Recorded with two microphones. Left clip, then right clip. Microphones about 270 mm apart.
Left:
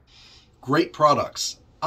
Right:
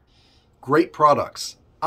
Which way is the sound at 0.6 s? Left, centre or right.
Centre.